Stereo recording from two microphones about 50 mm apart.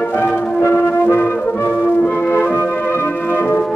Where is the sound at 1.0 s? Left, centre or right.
Left.